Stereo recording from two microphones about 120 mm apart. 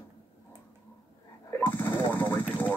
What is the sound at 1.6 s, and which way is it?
Gunshot, 15° left (ahead or behind).